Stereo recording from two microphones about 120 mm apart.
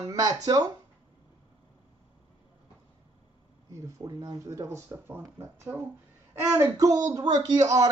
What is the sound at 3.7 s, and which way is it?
Speech, 30° right (ahead or behind).